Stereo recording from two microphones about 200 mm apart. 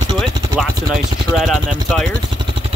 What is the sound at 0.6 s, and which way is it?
Speech, centre (ahead or behind).